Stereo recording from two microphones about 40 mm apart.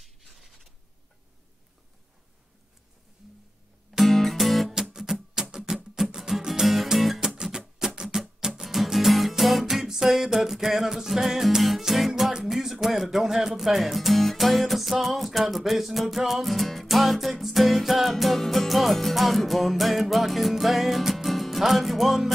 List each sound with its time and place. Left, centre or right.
4.0 s music: centre
5.3 s music: centre
7.2 s music: centre
12.4 s speech: centre